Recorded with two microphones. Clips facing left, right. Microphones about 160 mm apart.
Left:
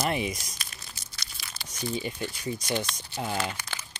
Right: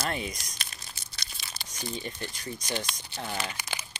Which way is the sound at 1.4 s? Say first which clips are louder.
Left 1 dB; 25° right (ahead or behind).